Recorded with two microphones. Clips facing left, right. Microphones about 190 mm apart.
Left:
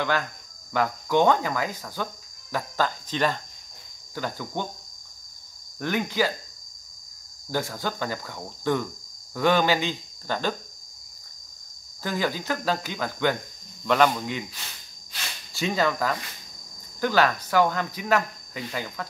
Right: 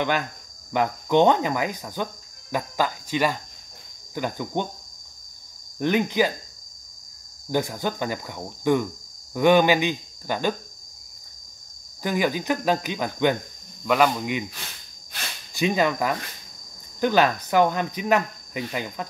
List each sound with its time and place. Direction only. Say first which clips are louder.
0.7 s speech: right 3 dB; 20° right (ahead or behind)
5.8 s speech: right 4 dB; 20° right (ahead or behind)
7.5 s speech: right 4 dB; 15° right (ahead or behind)
12.0 s speech: right 4 dB; 15° right (ahead or behind)
13.8 s speech: right 1 dB; 5° right (ahead or behind)
15.5 s speech: right 3 dB; 15° right (ahead or behind)